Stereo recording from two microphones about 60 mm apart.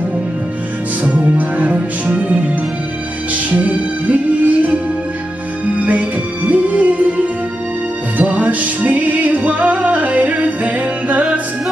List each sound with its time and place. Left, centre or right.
1.0 s music: right
3.5 s music: right
5.9 s music: right